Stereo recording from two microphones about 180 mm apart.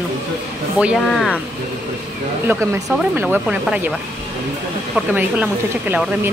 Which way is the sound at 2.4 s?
15° right (ahead or behind).